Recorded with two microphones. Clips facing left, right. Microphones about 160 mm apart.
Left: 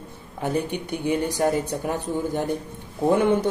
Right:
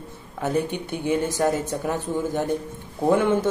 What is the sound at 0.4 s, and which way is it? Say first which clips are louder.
Speech: right 1 dB; 15° left (ahead or behind).